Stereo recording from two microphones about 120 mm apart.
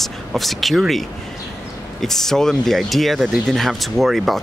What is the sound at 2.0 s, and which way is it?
Speech, 5° left (ahead or behind).